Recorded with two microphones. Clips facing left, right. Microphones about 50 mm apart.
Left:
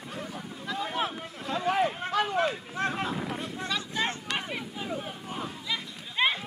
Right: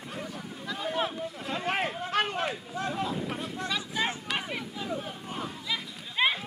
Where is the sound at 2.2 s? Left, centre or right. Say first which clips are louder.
Even; right.